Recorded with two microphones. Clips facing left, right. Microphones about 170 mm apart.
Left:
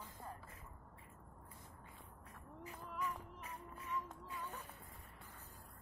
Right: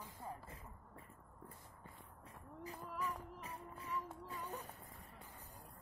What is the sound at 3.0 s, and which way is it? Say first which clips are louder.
Music: even; 35° right (ahead or behind).